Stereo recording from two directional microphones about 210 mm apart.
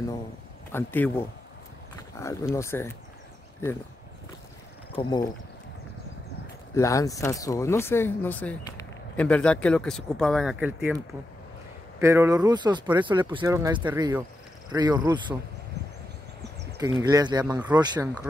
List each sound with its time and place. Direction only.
0.7 s speech: 10° left (ahead or behind)
5.0 s speech: 20° left (ahead or behind)
6.7 s speech: 15° left (ahead or behind); by 11.0 s 5° right (ahead or behind)
12.0 s speech: 15° right (ahead or behind)
17.0 s speech: 20° right (ahead or behind)